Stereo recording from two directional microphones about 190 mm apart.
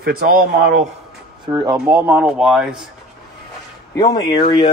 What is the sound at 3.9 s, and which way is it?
Speech, 20° left (ahead or behind).